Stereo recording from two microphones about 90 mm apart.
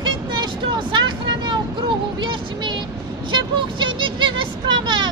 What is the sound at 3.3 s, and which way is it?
Speech, 65° right (ahead or behind).